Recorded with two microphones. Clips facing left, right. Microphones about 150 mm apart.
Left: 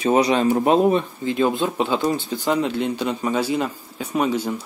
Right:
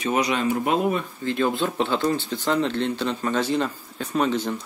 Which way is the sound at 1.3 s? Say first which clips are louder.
Left 2 dB; 15° left (ahead or behind).